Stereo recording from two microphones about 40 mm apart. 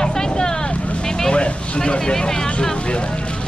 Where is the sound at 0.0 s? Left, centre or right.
Centre.